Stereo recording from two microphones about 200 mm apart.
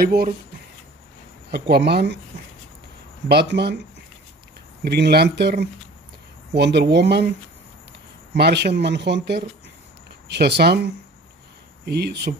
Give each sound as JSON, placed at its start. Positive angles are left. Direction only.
{"t": 0.0, "sound": "speech", "side_deg": -50}
{"t": 1.5, "sound": "speech", "side_deg": -55}
{"t": 3.3, "sound": "speech", "side_deg": -55}
{"t": 4.8, "sound": "speech", "side_deg": -55}